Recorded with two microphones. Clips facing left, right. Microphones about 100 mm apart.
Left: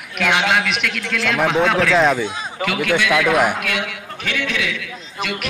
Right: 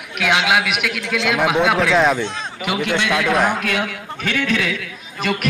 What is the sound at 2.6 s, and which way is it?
Speech, 20° right (ahead or behind).